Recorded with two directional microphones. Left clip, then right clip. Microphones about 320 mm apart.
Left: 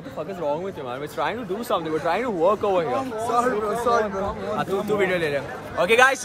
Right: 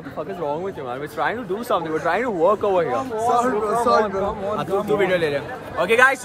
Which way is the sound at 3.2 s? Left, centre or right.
Centre.